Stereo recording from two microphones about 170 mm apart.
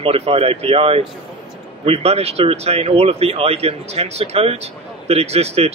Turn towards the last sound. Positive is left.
turn(degrees=-35)  # may be behind; listen again after turning